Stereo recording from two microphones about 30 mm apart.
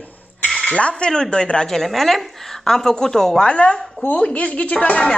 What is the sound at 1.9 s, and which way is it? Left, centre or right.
Speech, centre.